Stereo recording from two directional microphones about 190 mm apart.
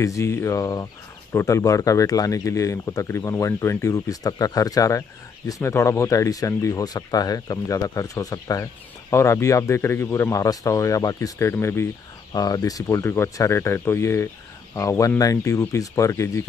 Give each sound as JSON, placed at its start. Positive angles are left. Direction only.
{"t": 0.0, "sound": "speech", "side_deg": 15}